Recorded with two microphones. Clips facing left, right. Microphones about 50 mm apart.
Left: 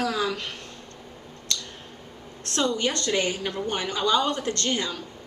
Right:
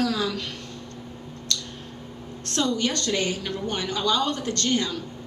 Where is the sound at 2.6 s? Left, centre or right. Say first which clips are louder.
Even; left.